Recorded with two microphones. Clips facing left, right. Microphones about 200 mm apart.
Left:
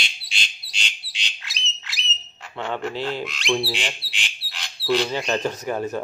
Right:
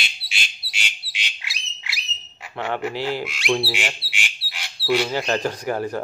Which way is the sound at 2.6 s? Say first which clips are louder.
Right 2 dB; 10° right (ahead or behind).